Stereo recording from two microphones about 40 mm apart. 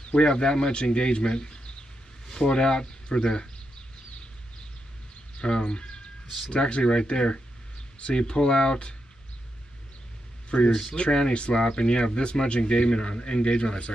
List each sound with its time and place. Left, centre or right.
0.0 s speech: left
5.4 s speech: left
10.5 s speech: left